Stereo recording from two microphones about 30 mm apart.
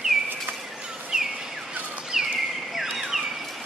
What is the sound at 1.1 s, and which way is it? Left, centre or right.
Bird, right.